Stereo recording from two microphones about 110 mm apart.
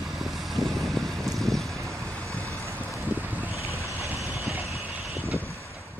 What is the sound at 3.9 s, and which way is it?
Vehicle, 20° right (ahead or behind).